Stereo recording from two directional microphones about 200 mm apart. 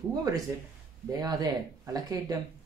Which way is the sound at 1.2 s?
20° right (ahead or behind).